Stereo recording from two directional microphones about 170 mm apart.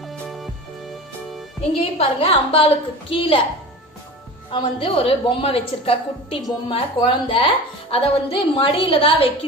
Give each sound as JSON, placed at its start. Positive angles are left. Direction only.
{"t": 0.0, "sound": "music", "side_deg": 0}
{"t": 1.8, "sound": "a woman's voice", "side_deg": 35}
{"t": 4.5, "sound": "a woman's voice", "side_deg": 30}